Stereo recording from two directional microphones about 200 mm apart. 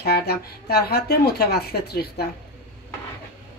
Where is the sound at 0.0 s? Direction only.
55° left (ahead or behind).